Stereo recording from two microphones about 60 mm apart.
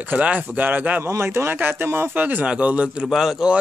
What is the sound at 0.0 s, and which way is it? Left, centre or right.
Speech, right.